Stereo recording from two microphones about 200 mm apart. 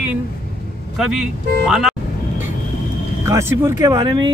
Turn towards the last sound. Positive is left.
turn(degrees=-20)  # may be behind; listen again after turning